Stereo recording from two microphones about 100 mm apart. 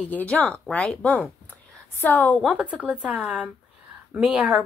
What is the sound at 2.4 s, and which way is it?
Speech, 15° right (ahead or behind).